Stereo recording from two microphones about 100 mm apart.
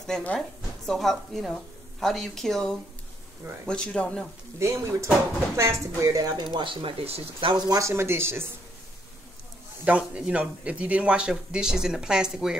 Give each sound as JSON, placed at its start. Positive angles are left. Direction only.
{"t": 0.0, "sound": "a woman's voice", "side_deg": 10}
{"t": 4.6, "sound": "speech", "side_deg": -30}
{"t": 6.3, "sound": "speech", "side_deg": -55}
{"t": 7.5, "sound": "speech", "side_deg": -40}
{"t": 7.9, "sound": "speech", "side_deg": -25}
{"t": 9.8, "sound": "a man's voice", "side_deg": -10}